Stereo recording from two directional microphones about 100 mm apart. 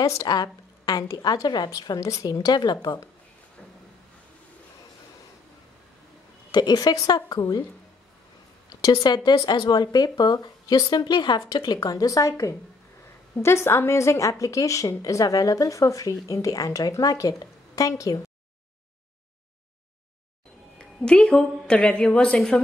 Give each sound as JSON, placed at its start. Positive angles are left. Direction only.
{"t": 0.0, "sound": "a woman's voice", "side_deg": 35}
{"t": 6.5, "sound": "speech", "side_deg": 45}
{"t": 8.6, "sound": "a woman's voice", "side_deg": 45}
{"t": 20.7, "sound": "a woman's voice", "side_deg": 10}